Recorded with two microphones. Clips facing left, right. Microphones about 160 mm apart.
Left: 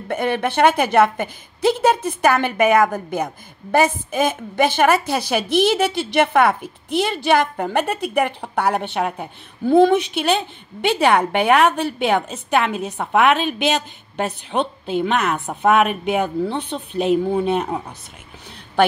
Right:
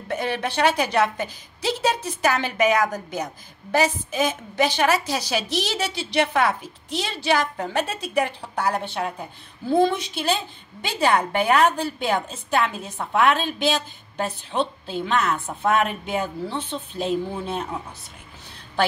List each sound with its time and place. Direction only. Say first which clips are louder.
0.1 s a woman's voice: left 5 dB; 55° left (ahead or behind)